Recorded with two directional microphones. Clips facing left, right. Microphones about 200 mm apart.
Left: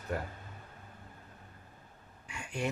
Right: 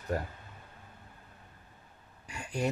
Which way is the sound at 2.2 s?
35° right (ahead or behind).